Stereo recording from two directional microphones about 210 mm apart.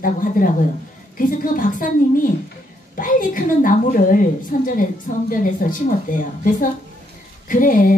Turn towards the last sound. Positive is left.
turn(degrees=40)  # may be behind; listen again after turning